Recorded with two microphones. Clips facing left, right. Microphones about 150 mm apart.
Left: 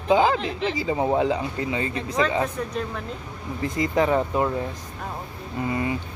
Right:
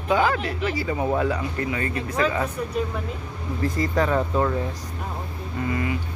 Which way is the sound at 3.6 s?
20° left (ahead or behind).